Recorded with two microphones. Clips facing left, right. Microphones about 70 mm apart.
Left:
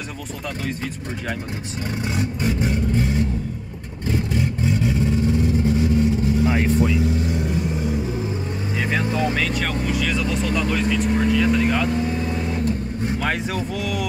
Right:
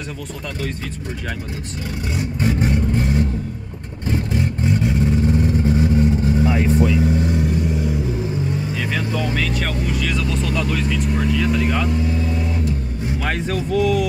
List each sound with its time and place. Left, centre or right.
8.7 s speech: left
9.3 s speech: centre
13.2 s speech: centre